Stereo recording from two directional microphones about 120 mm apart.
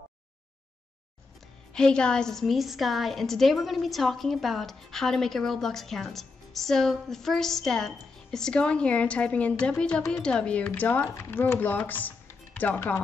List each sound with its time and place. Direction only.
1.7 s a woman's voice: 5° left (ahead or behind)